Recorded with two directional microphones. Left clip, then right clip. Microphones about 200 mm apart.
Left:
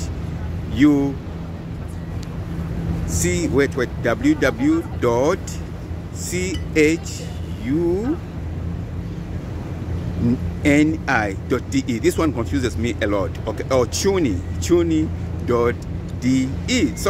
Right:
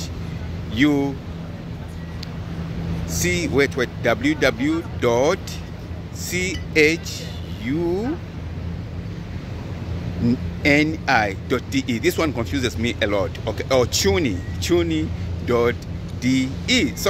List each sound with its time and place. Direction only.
0.7 s speech: 10° right (ahead or behind)
3.1 s speech: 10° right (ahead or behind)
10.2 s speech: 10° right (ahead or behind)